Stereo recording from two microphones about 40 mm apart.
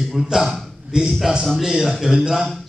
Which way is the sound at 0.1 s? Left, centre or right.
Centre.